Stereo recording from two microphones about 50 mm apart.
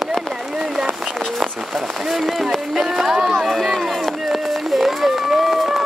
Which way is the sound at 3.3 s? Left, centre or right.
Centre.